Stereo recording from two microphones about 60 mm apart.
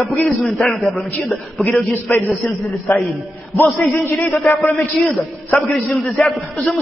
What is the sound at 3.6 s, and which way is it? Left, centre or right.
A man's voice, left.